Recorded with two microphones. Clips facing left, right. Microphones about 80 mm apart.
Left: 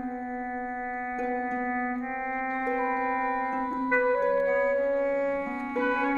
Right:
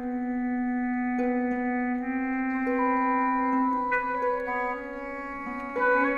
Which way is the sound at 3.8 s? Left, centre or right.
Left.